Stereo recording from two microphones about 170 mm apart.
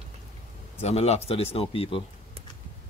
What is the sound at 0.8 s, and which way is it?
Speech, 40° left (ahead or behind).